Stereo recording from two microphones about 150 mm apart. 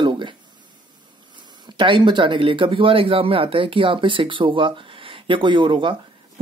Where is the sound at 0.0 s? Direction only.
30° right (ahead or behind).